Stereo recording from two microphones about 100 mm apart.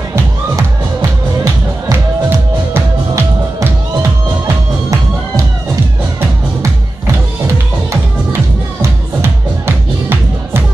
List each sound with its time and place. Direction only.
2.7 s music: 25° right (ahead or behind)
8.8 s music: 25° right (ahead or behind)